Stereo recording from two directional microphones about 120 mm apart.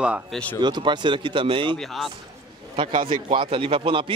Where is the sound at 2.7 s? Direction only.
45° right (ahead or behind).